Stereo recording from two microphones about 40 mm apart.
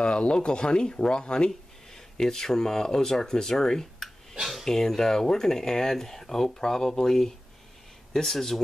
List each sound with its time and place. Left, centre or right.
0.0 s speech: left
4.4 s a sound: centre
4.6 s speech: centre